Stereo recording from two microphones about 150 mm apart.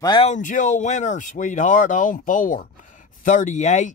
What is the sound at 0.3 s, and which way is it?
Speech, 60° left (ahead or behind).